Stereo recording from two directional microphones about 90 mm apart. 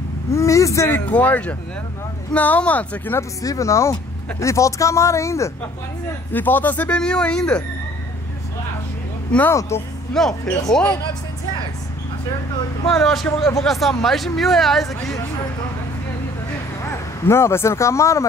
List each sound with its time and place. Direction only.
0.3 s speech: 35° left (ahead or behind); by 3.2 s 15° left (ahead or behind)
3.2 s speech: 35° left (ahead or behind)
6.3 s speech: 20° left (ahead or behind)
9.5 s speech: 30° left (ahead or behind)
10.1 s speech: 5° left (ahead or behind)
12.9 s speech: 5° left (ahead or behind)
16.8 s speech: 30° left (ahead or behind)